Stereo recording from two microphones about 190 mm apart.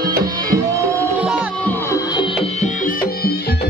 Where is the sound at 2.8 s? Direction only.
50° left (ahead or behind).